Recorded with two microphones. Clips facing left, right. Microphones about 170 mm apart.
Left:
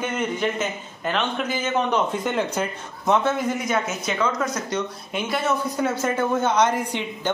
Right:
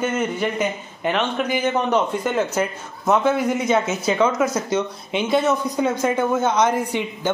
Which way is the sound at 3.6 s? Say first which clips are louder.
Right 5 dB; 25° right (ahead or behind).